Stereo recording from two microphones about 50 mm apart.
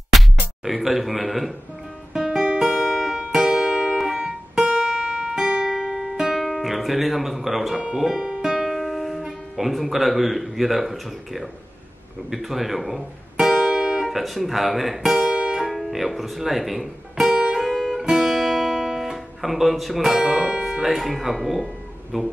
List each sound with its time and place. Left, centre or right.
0.7 s speech: centre
2.1 s guitar: centre
2.4 s guitar: centre
3.2 s music: centre
5.8 s music: centre
8.7 s music: centre
9.2 s speech: centre
13.5 s music: centre
14.0 s speech: centre
15.6 s music: centre
17.6 s guitar: centre
20.8 s speech: centre